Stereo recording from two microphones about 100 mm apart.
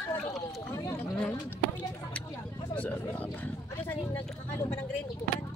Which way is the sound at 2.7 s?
15° left (ahead or behind).